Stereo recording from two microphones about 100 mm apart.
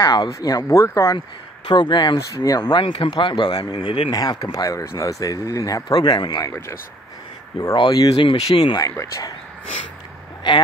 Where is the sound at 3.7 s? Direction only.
90° left.